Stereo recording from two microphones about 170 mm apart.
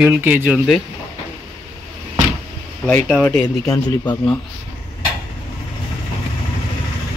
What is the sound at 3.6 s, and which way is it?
Speech, 25° left (ahead or behind).